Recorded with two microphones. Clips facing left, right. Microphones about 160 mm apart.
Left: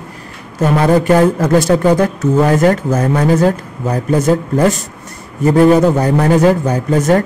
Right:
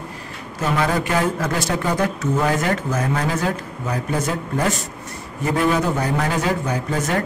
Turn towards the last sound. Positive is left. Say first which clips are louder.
# left 10 dB
turn(degrees=45)  # may be behind; listen again after turning